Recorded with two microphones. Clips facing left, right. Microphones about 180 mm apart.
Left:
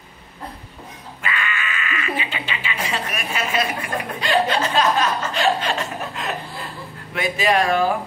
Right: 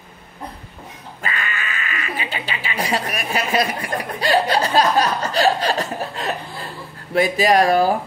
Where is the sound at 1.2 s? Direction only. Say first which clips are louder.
Even; 40° right (ahead or behind).